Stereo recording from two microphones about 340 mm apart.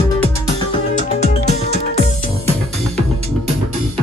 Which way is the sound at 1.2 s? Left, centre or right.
Centre.